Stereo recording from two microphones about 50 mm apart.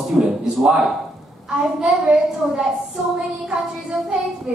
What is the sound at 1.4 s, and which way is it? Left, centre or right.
Speech, centre.